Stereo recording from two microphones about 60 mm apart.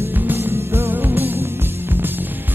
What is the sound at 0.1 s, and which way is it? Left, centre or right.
Music, right.